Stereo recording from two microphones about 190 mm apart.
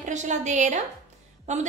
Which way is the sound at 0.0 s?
40° right (ahead or behind).